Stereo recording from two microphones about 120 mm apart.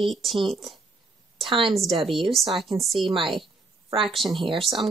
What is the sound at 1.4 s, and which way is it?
Speech, 45° right (ahead or behind).